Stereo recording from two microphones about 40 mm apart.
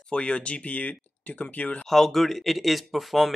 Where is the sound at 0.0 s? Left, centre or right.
Left.